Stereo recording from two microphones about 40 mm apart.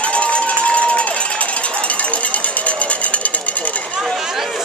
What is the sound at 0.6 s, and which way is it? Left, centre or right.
Run, left.